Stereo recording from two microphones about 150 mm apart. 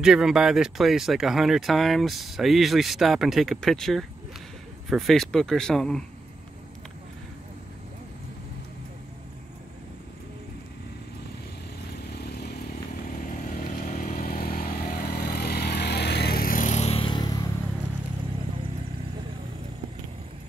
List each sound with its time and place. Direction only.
0.0 s speech: 5° right (ahead or behind)
12.1 s vehicle: 90° left
13.2 s vehicle: 65° left (ahead or behind); by 17.5 s 25° left (ahead or behind)